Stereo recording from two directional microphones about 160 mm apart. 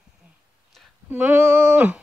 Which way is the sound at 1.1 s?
10° right (ahead or behind).